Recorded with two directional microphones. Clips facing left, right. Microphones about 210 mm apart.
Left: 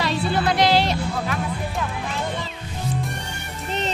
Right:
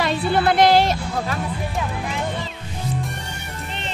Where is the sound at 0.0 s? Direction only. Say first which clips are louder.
Right 3 dB; 50° right (ahead or behind).